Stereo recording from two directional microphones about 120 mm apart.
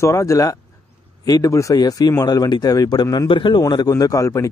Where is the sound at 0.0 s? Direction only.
25° left (ahead or behind).